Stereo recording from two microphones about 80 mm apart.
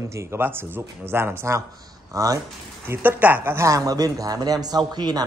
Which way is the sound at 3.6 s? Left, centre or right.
Right.